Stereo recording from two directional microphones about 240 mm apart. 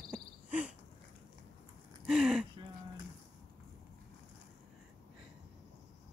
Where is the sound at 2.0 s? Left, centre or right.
Centre.